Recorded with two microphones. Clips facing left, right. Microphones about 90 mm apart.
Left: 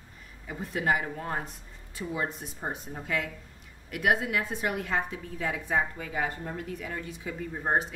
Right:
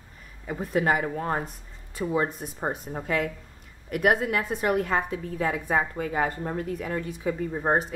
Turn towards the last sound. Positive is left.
turn(degrees=-45)  # may be behind; listen again after turning